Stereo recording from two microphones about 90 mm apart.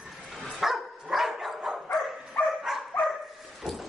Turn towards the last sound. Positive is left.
turn(degrees=0)  # may be behind; listen again after turning